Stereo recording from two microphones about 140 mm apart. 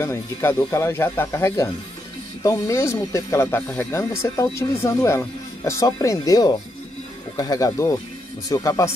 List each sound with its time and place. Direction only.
0.0 s speech: 20° left (ahead or behind)